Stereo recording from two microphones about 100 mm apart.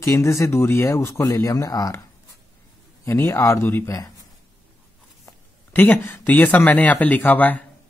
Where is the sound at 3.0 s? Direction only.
25° left (ahead or behind).